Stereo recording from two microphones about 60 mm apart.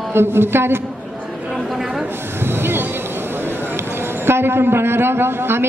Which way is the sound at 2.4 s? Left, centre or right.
Right.